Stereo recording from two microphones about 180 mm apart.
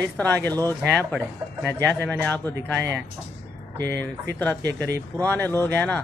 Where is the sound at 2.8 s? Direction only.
75° right (ahead or behind).